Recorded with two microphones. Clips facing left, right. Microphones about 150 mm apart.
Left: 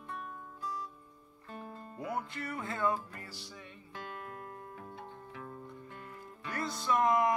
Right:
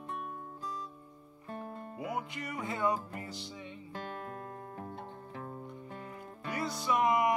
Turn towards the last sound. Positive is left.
turn(degrees=-15)  # may be behind; listen again after turning